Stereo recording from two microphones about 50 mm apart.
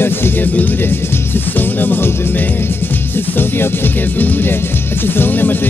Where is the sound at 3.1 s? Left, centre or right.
Left.